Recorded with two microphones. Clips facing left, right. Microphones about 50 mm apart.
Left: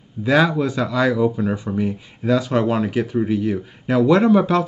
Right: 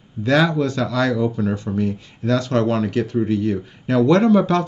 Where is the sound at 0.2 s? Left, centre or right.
Centre.